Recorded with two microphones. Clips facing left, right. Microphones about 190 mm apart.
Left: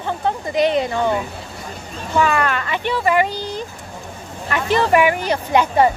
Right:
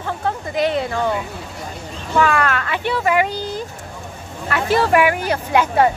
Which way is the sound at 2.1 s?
Centre (ahead or behind).